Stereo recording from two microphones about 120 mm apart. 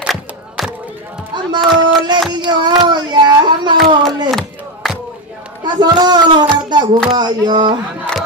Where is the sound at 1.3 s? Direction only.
40° right (ahead or behind).